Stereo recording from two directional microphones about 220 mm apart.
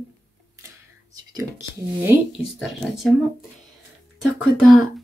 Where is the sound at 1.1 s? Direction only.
15° right (ahead or behind).